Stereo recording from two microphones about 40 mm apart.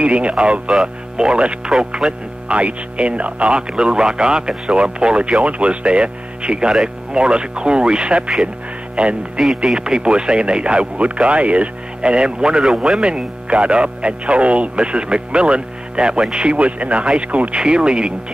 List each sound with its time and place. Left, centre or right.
0.0 s speech: right
1.7 s speech: centre
2.4 s speech: right
9.4 s speech: centre
9.8 s speech: right